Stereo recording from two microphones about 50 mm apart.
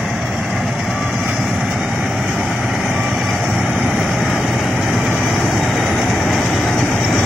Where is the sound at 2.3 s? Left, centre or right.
Left.